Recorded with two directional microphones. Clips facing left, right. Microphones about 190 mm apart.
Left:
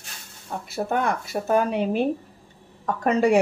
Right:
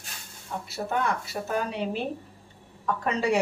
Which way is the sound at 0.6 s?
50° left (ahead or behind).